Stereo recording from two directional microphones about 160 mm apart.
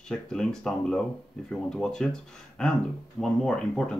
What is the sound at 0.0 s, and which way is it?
Speech, 5° left (ahead or behind).